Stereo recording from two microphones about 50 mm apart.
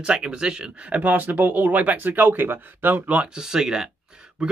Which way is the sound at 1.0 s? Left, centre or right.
Right.